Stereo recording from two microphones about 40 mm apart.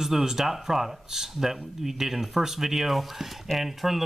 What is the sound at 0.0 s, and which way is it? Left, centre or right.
Speech, centre.